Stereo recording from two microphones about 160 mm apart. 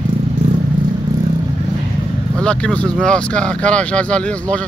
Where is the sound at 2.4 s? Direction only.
5° left (ahead or behind).